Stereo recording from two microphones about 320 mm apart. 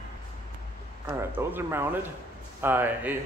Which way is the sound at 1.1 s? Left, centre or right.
Centre.